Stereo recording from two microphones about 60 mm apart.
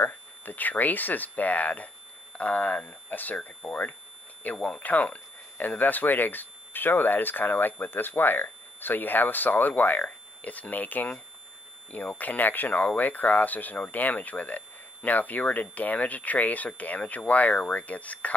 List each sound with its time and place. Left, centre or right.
0.5 s speech: left